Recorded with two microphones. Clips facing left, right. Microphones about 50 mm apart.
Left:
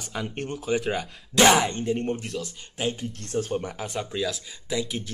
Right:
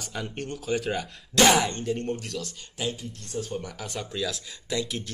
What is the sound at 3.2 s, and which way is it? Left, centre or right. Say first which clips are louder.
Speech: left 6 dB; left.